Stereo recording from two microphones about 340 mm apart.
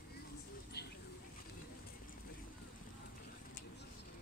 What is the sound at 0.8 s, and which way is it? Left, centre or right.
Bird, left.